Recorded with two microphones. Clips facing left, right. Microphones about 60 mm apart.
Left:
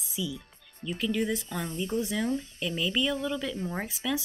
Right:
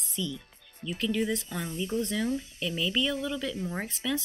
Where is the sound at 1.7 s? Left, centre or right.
Left.